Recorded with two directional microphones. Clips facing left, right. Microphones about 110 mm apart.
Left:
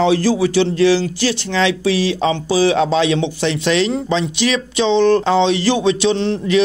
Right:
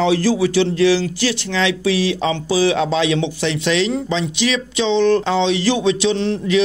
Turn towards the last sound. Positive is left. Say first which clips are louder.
# left 1 dB
turn(degrees=35)  # may be behind; listen again after turning